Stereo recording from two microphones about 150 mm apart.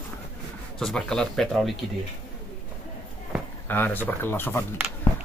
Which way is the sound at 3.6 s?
15° left (ahead or behind).